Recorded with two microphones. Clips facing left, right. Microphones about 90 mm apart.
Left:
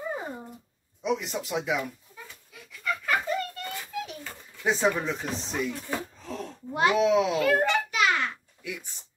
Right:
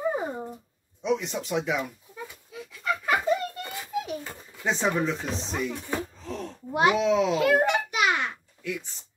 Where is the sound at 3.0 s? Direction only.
15° right (ahead or behind).